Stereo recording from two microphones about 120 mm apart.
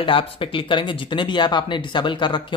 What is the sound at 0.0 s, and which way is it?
Speech, 45° left (ahead or behind).